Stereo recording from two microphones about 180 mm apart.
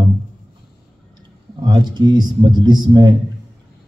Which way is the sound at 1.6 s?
25° right (ahead or behind).